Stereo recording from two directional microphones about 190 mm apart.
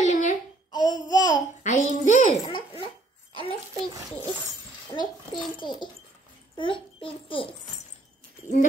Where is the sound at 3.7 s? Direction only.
20° right (ahead or behind).